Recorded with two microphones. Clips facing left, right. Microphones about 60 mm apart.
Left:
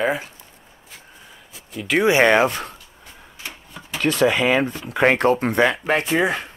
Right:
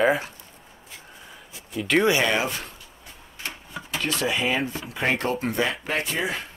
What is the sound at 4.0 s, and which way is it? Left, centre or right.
Speech, left.